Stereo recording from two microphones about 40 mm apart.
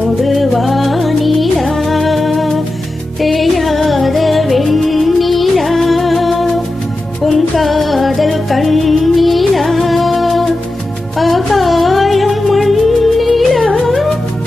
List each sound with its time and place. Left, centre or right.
0.2 s music: centre